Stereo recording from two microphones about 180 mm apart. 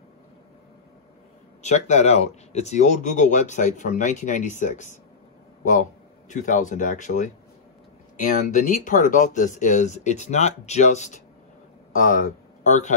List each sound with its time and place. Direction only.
1.6 s speech: 40° left (ahead or behind)
8.3 s speech: 45° left (ahead or behind)